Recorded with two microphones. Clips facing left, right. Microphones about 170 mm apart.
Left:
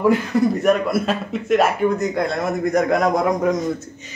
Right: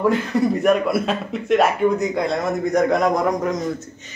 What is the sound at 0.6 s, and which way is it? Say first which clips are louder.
Speech: even; centre (ahead or behind).